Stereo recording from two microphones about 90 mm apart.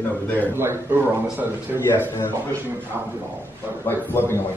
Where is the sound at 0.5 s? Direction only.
25° right (ahead or behind).